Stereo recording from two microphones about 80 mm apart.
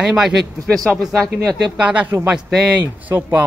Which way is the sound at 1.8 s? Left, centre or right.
Centre.